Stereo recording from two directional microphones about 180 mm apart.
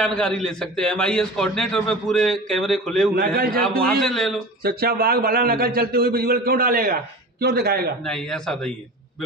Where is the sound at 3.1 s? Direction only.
55° right (ahead or behind).